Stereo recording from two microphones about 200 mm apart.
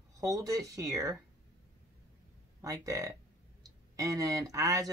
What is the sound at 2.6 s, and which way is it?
Speech, 15° right (ahead or behind).